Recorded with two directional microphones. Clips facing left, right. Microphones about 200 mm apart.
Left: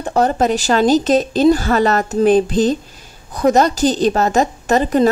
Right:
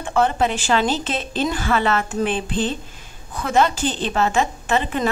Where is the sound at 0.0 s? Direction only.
40° left (ahead or behind).